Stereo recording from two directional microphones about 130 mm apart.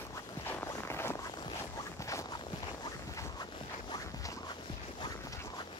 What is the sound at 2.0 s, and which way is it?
Walk, 25° left (ahead or behind).